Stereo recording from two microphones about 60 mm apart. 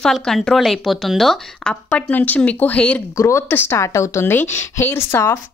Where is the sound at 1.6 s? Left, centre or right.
Centre.